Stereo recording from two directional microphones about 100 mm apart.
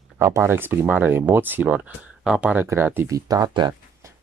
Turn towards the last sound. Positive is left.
turn(degrees=-45)  # may be behind; listen again after turning